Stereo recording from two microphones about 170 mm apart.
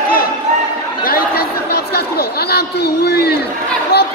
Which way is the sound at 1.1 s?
60° left (ahead or behind).